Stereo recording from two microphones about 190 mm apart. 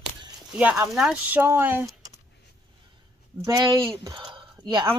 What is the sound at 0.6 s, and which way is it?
Speech, 10° right (ahead or behind).